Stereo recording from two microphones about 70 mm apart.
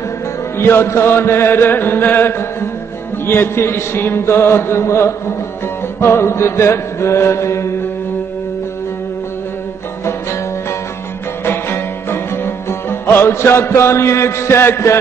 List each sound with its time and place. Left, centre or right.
0.6 s chant: left
11.4 s music: left